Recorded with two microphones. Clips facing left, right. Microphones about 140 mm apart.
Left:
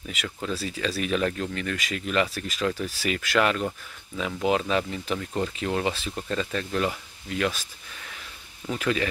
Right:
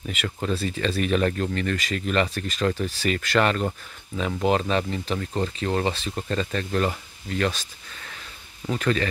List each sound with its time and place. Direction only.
0.0 s speech: centre (ahead or behind)
5.1 s speech: 15° right (ahead or behind)
5.6 s speech: 5° left (ahead or behind)
8.6 s speech: 10° left (ahead or behind)